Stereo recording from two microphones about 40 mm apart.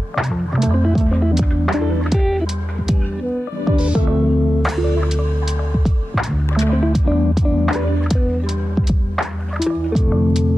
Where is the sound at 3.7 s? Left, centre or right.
Right.